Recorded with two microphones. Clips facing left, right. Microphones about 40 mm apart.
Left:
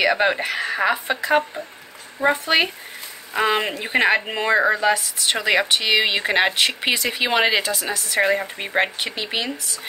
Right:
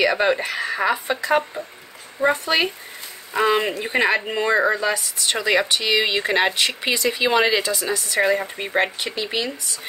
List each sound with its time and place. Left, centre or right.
0.0 s speech: left; by 2.4 s centre
2.4 s speech: left
3.3 s speech: centre
4.8 s speech: left
7.9 s speech: centre
9.0 s speech: left